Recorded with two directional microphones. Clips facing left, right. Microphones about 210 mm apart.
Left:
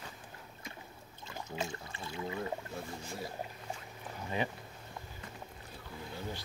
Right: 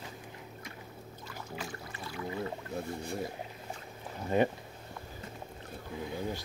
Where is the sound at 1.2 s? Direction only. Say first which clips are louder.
Left 3 dB; 25° left (ahead or behind).